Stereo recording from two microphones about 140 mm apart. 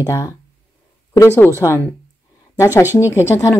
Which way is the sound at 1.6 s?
20° left (ahead or behind).